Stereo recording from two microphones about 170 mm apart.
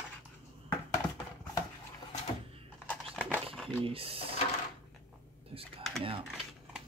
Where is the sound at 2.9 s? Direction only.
5° left (ahead or behind).